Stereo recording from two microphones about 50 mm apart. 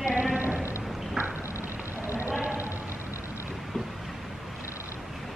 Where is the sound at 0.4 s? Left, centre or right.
Right.